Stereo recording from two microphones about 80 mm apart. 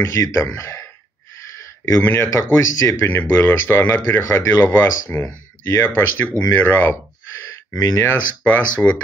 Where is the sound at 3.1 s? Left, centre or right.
Left.